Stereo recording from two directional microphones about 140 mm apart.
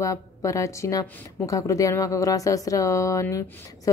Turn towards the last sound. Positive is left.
turn(degrees=20)  # may be behind; listen again after turning